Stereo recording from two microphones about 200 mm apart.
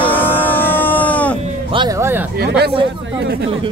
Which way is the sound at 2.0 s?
10° right (ahead or behind).